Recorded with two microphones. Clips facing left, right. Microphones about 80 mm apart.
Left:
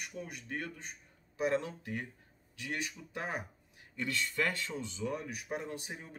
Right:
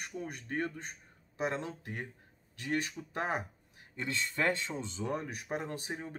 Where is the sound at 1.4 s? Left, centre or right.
Right.